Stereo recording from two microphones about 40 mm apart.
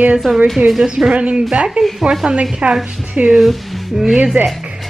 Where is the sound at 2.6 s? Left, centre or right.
Right.